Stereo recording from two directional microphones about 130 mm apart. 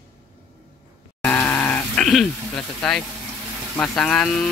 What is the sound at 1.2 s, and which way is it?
Groan, 15° left (ahead or behind).